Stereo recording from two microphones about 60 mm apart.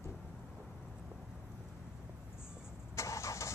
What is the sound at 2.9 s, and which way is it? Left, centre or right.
Vehicle, left.